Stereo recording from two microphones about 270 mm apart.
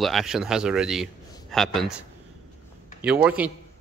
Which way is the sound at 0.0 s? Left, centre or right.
Centre.